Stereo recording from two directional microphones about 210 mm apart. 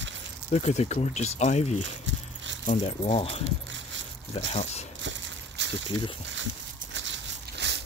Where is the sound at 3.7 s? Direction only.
60° right (ahead or behind).